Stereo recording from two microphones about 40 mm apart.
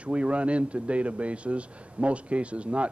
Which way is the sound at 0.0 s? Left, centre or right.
Right.